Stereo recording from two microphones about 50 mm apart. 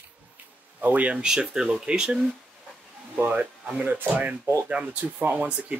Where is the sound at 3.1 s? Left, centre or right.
Right.